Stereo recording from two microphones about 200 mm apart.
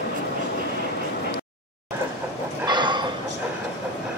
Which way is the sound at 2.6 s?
20° right (ahead or behind).